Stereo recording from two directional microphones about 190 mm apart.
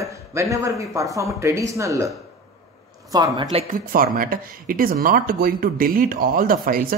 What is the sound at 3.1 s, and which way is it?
Speech, 20° right (ahead or behind).